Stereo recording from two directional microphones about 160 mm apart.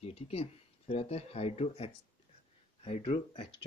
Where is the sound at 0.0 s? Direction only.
40° left (ahead or behind).